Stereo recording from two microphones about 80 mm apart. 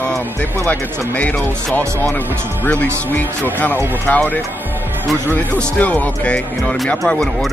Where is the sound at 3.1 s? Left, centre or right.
Left.